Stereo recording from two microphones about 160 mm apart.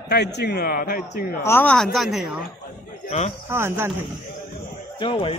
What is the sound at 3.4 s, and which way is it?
Speech, 15° right (ahead or behind).